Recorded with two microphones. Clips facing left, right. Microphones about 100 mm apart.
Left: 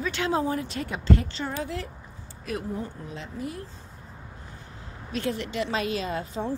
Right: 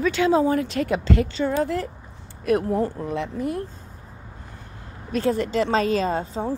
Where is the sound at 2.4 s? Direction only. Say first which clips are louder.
Right 11 dB; 60° right (ahead or behind).